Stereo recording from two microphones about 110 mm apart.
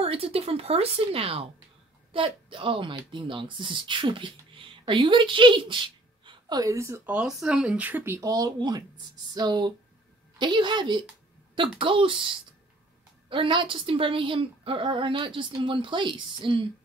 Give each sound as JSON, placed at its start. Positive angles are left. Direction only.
{"t": 0.0, "sound": "a woman's voice", "side_deg": -60}
{"t": 6.6, "sound": "speech", "side_deg": -30}
{"t": 7.1, "sound": "speech", "side_deg": -5}
{"t": 8.3, "sound": "a woman's voice", "side_deg": -35}
{"t": 13.3, "sound": "a woman's voice", "side_deg": -50}